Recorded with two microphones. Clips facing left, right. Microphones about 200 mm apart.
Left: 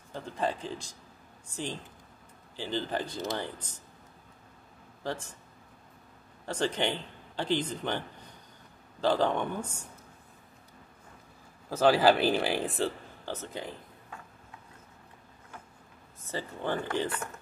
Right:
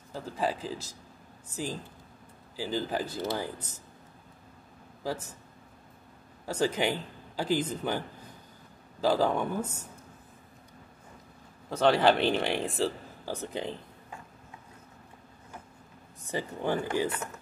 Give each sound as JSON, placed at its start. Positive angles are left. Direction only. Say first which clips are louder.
{"t": 0.1, "sound": "speech", "louder": "right 1 dB", "side_deg": -5}
{"t": 5.0, "sound": "speech", "louder": "right 1 dB", "side_deg": -5}
{"t": 6.4, "sound": "a man's voice", "louder": "right 2 dB", "side_deg": -10}
{"t": 11.7, "sound": "speech", "louder": "even", "side_deg": 5}
{"t": 13.3, "sound": "speech", "louder": "right 3 dB", "side_deg": -15}
{"t": 16.3, "sound": "speech", "louder": "right 3 dB", "side_deg": -15}